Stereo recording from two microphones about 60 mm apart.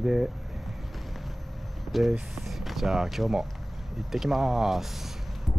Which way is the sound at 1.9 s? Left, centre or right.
Centre.